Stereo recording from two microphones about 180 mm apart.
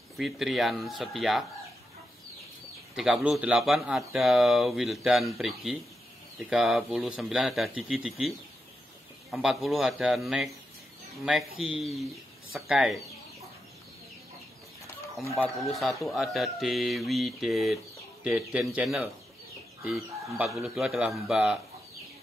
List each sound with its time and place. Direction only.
0.2 s speech: centre (ahead or behind)
3.0 s speech: 5° right (ahead or behind)
9.3 s speech: centre (ahead or behind)
15.3 s speech: 5° left (ahead or behind)